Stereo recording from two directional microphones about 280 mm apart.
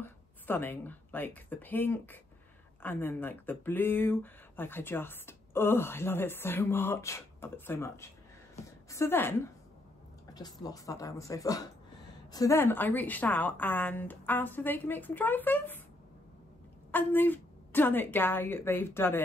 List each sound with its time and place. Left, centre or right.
0.0 s speech: centre
16.9 s speech: centre